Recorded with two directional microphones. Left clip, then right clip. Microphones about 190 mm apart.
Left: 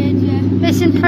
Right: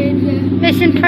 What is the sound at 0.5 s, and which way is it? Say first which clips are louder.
Vehicle: right 3 dB; 15° left (ahead or behind).